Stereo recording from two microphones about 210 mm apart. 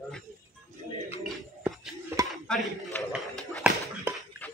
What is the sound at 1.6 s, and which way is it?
Music, 10° right (ahead or behind).